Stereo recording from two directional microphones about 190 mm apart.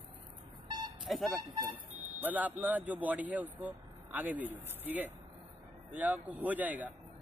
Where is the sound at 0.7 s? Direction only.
20° right (ahead or behind).